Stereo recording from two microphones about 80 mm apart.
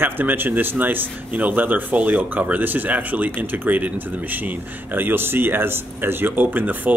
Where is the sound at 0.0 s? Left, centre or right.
Right.